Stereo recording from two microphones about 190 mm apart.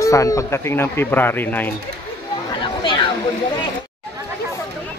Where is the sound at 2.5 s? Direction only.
25° left (ahead or behind).